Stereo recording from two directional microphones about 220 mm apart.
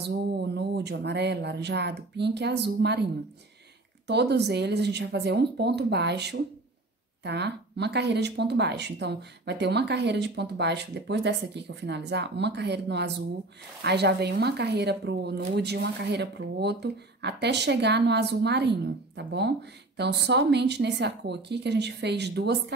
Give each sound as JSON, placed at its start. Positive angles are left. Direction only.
{"t": 0.0, "sound": "speech", "side_deg": -50}
{"t": 4.1, "sound": "speech", "side_deg": -50}